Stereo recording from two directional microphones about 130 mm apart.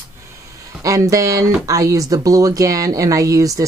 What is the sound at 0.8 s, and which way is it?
Speech, 25° right (ahead or behind).